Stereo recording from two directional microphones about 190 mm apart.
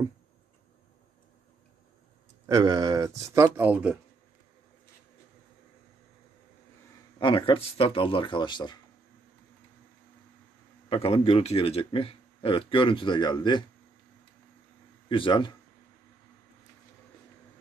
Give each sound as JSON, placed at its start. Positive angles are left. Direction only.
{"t": 2.4, "sound": "speech", "side_deg": -20}
{"t": 7.2, "sound": "speech", "side_deg": 25}
{"t": 10.9, "sound": "a man's voice", "side_deg": 30}
{"t": 15.0, "sound": "speech", "side_deg": 25}